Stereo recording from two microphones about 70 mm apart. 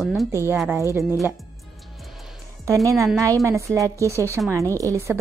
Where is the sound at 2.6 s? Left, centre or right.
Right.